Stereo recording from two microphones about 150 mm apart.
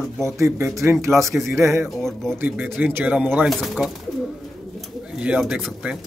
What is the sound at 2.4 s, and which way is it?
Speech, 10° right (ahead or behind).